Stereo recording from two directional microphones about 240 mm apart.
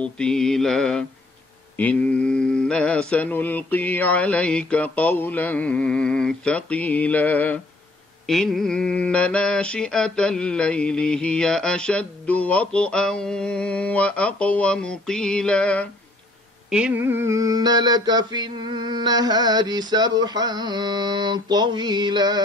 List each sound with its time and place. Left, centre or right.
0.0 s mantra: centre
16.7 s mantra: centre